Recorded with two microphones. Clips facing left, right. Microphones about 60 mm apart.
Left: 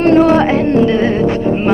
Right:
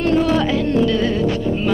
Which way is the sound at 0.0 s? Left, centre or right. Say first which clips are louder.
Left 7 dB; left.